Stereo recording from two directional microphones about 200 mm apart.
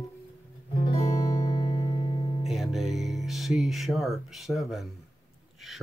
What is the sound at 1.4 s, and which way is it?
Music, 20° left (ahead or behind).